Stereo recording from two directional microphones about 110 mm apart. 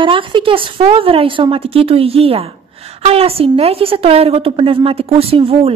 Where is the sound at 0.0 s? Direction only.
50° right (ahead or behind).